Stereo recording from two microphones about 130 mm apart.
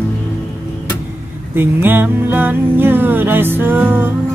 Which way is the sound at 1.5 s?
15° right (ahead or behind).